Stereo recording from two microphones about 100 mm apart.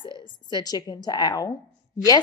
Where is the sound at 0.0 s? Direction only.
50° left (ahead or behind).